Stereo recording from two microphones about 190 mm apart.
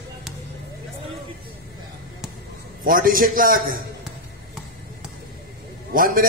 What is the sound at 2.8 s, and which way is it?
Speech, 50° right (ahead or behind).